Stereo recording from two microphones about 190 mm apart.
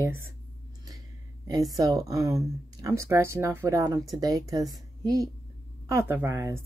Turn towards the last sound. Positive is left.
turn(degrees=-15)  # may be behind; listen again after turning